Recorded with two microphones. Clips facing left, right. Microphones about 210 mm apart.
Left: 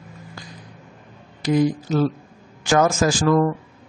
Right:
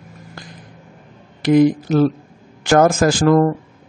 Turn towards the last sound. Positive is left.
turn(degrees=-50)  # may be behind; listen again after turning